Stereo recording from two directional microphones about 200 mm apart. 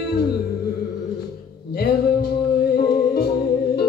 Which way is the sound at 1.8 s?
50° left (ahead or behind).